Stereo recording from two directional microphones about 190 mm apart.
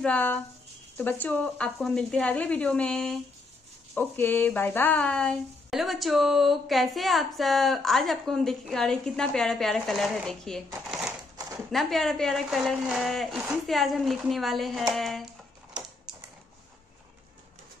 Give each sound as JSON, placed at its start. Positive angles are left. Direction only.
{"t": 0.0, "sound": "speech", "side_deg": 10}
{"t": 10.9, "sound": "crumpling", "side_deg": 0}
{"t": 11.3, "sound": "a sound", "side_deg": -20}
{"t": 11.7, "sound": "speech", "side_deg": 0}